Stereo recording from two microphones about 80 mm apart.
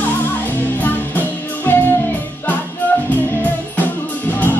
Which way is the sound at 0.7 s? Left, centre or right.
Left.